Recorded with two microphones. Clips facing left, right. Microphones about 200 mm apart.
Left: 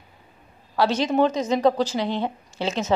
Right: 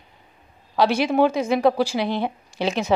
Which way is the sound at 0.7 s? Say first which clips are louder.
Right 2 dB; 15° right (ahead or behind).